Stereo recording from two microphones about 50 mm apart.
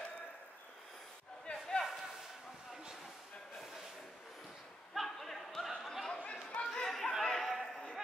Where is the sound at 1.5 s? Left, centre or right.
Centre.